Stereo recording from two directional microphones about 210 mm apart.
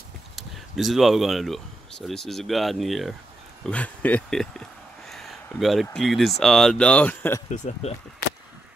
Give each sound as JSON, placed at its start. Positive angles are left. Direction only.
{"t": 0.4, "sound": "speech", "side_deg": 0}
{"t": 7.4, "sound": "speech", "side_deg": 35}